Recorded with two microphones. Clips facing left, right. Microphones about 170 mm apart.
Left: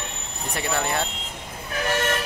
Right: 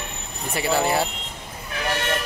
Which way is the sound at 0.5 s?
5° right (ahead or behind).